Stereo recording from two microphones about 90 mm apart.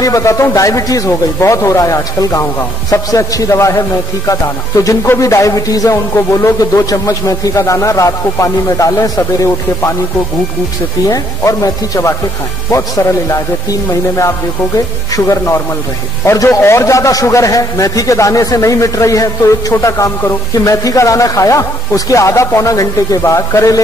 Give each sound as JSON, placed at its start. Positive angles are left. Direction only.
{"t": 0.0, "sound": "speech", "side_deg": 35}
{"t": 4.8, "sound": "speech", "side_deg": 35}
{"t": 11.1, "sound": "speech", "side_deg": 40}